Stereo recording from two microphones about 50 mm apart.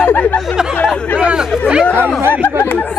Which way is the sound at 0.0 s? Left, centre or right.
Left.